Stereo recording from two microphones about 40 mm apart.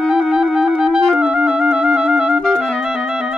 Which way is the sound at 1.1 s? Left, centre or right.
Right.